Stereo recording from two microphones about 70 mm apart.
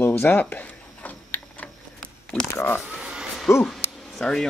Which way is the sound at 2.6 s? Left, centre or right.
Left.